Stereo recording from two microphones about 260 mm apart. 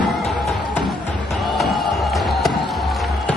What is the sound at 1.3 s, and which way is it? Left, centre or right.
Music, centre.